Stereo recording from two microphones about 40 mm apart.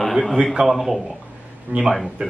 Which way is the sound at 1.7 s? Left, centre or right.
Right.